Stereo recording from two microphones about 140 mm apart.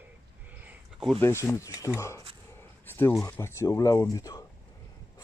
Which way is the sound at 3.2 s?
15° left (ahead or behind).